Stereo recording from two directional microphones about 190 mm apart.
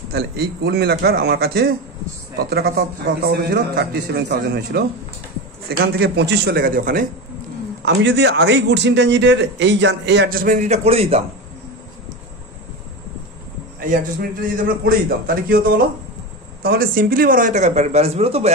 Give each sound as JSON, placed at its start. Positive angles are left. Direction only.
{"t": 0.1, "sound": "a man's voice", "side_deg": -55}
{"t": 7.8, "sound": "a man's voice", "side_deg": -65}
{"t": 14.9, "sound": "a man's voice", "side_deg": -50}
{"t": 16.6, "sound": "speech", "side_deg": -50}